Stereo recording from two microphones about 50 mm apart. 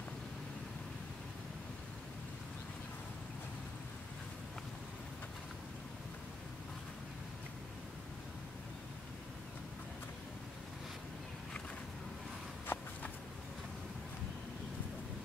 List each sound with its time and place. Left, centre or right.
12.7 s walk: left